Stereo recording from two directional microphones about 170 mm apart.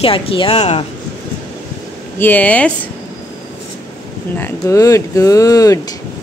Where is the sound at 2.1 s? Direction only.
10° left (ahead or behind).